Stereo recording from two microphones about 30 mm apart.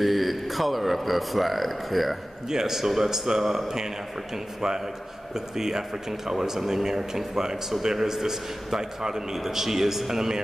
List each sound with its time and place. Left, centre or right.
0.0 s speech: centre
2.5 s a man's voice: centre
5.3 s a man's voice: centre